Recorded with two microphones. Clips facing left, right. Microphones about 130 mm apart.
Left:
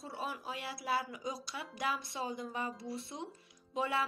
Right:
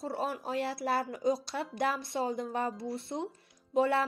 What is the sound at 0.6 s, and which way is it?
Speech, 60° right (ahead or behind).